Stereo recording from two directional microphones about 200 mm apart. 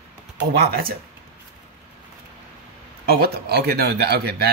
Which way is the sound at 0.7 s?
50° right (ahead or behind).